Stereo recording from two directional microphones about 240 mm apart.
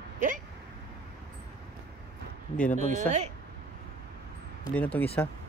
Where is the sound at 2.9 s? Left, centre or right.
Right.